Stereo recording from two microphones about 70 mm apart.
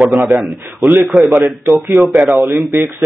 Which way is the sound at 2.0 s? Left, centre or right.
Right.